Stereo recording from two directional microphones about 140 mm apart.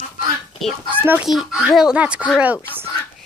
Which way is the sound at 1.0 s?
15° right (ahead or behind).